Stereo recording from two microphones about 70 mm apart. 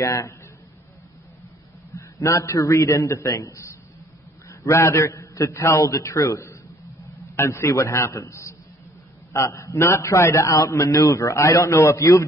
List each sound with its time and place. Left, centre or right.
0.0 s a man's voice: left
2.0 s a man's voice: left
7.3 s a man's voice: left
7.6 s a man's voice: left
10.4 s a man's voice: left